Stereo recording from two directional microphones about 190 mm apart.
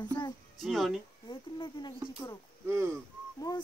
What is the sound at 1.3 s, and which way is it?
Speech, 25° left (ahead or behind).